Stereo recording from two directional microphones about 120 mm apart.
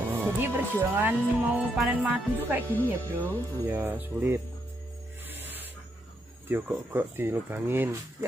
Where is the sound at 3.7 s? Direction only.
15° right (ahead or behind).